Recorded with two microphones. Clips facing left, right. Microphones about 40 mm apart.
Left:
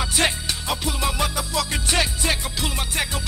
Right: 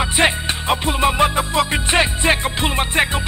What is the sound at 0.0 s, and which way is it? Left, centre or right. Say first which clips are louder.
Music: right 6 dB; right.